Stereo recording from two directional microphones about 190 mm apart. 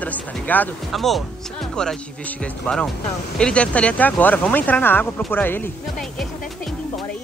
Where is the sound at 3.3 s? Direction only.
5° left (ahead or behind).